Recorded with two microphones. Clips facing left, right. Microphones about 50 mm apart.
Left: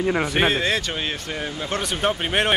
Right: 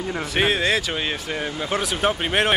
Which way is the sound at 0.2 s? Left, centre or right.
Centre.